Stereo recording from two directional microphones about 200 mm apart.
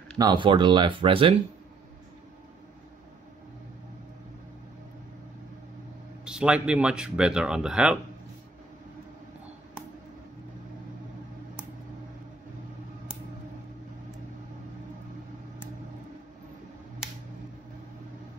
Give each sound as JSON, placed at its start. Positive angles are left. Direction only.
{"t": 0.2, "sound": "speech", "side_deg": -25}
{"t": 6.2, "sound": "speech", "side_deg": -5}